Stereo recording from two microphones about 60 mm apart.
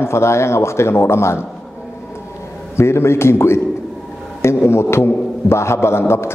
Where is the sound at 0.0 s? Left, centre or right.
Left.